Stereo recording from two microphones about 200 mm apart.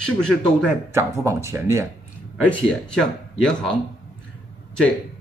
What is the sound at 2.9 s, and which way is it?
Speech, 5° left (ahead or behind).